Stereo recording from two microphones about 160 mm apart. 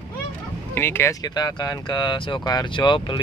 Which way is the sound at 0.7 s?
15° left (ahead or behind).